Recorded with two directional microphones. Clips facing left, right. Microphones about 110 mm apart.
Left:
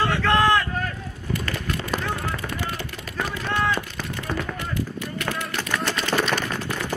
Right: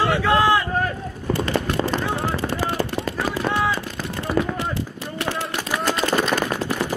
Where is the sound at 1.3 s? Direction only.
30° right (ahead or behind).